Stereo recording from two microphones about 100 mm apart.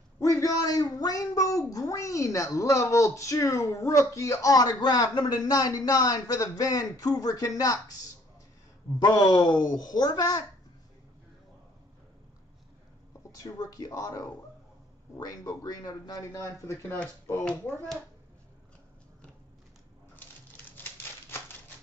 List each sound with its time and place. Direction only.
0.2 s speech: 35° left (ahead or behind)
9.0 s a woman's voice: 45° left (ahead or behind)
13.4 s a child's voice: 35° left (ahead or behind); by 17.8 s 20° left (ahead or behind)
20.2 s a sound: 20° left (ahead or behind)